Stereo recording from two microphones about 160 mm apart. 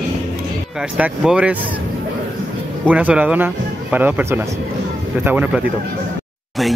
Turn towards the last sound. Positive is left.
turn(degrees=-10)  # may be behind; listen again after turning